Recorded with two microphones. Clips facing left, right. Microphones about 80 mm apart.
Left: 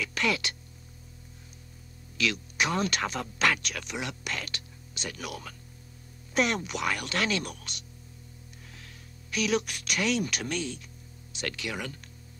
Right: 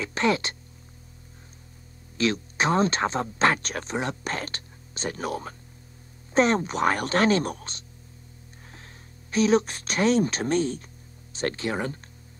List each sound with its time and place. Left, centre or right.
0.0 s speech: right
2.1 s speech: right
9.3 s speech: right